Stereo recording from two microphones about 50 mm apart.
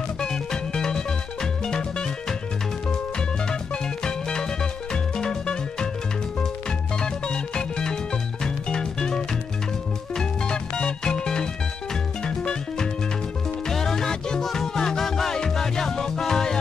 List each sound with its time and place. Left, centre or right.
0.2 s music: centre
4.0 s music: centre
7.0 s music: centre